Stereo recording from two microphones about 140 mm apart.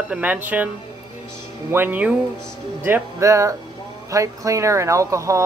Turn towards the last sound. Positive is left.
turn(degrees=-20)  # may be behind; listen again after turning